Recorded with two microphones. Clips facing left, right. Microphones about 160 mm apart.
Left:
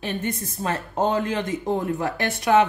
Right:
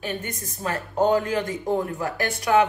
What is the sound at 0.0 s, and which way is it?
Speech, 30° left (ahead or behind).